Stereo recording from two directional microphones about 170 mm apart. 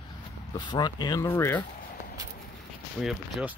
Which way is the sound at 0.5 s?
25° left (ahead or behind).